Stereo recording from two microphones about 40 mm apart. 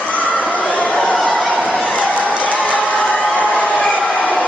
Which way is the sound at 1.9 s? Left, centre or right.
Left.